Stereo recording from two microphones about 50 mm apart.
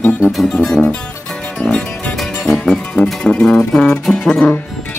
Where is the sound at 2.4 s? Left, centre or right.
Centre.